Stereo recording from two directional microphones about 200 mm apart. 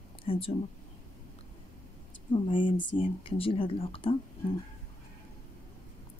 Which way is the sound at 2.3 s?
25° left (ahead or behind).